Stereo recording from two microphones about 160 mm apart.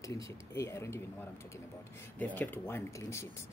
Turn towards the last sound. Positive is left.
turn(degrees=20)  # may be behind; listen again after turning